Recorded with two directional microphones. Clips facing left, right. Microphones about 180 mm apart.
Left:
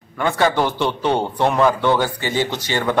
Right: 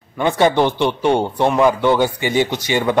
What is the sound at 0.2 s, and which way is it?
A man's voice, 20° right (ahead or behind).